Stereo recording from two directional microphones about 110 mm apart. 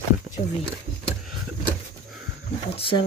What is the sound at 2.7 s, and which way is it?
Speech, 55° left (ahead or behind).